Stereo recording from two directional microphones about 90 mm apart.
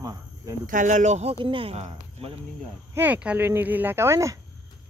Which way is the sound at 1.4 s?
80° right.